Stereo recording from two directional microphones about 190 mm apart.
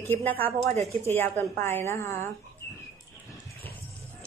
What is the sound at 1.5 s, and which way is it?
Speech, 15° left (ahead or behind).